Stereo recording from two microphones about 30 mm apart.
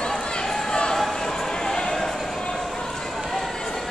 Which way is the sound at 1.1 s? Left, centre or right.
Centre.